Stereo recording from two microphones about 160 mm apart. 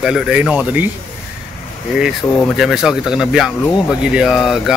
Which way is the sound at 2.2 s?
15° left (ahead or behind).